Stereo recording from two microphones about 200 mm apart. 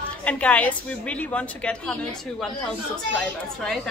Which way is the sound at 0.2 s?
5° left (ahead or behind).